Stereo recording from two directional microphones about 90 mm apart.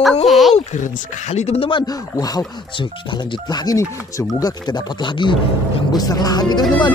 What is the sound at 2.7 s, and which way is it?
Speech, 55° left (ahead or behind).